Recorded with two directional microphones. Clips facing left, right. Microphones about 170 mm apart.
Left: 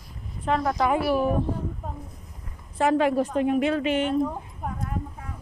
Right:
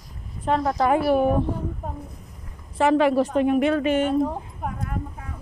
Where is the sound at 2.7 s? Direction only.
85° right; by 4.0 s 45° right (ahead or behind).